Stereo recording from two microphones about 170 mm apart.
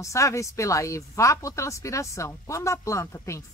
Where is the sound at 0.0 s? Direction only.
20° left (ahead or behind).